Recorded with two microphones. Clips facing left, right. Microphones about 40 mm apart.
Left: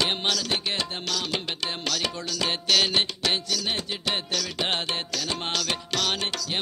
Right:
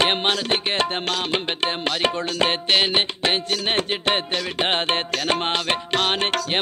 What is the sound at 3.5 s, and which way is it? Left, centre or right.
Music, right.